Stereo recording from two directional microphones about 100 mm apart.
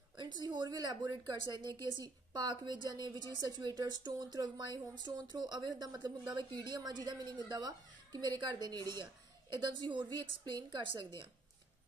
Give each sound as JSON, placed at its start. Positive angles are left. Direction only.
{"t": 0.2, "sound": "a woman's voice", "side_deg": -45}